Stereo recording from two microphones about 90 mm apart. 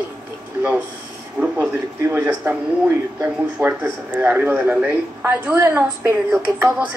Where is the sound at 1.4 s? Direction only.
15° right (ahead or behind).